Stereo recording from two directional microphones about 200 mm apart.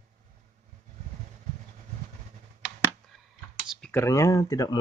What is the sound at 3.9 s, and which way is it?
Speech, 15° left (ahead or behind).